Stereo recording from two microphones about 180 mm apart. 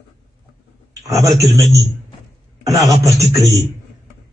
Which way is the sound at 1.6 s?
15° right (ahead or behind).